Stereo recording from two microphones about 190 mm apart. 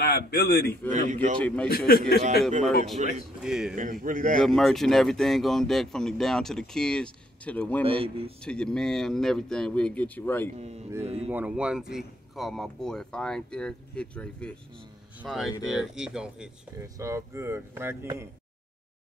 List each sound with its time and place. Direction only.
0.0 s a man's voice: 55° left (ahead or behind)
0.9 s speech: 40° right (ahead or behind)
1.4 s speech: 5° left (ahead or behind)
1.9 s a man's voice: 55° left (ahead or behind)
3.0 s speech: 40° right (ahead or behind)
3.4 s speech: 5° right (ahead or behind)
3.7 s a man's voice: 45° right (ahead or behind)
4.4 s speech: centre (ahead or behind)
7.8 s a man's voice: 30° right (ahead or behind)
8.5 s speech: 5° left (ahead or behind)
10.6 s speech: 35° right (ahead or behind)
11.2 s speech: 5° right (ahead or behind)
16.8 s speech: 15° right (ahead or behind)